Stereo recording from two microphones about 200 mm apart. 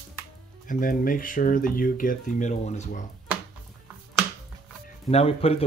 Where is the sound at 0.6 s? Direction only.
45° left (ahead or behind).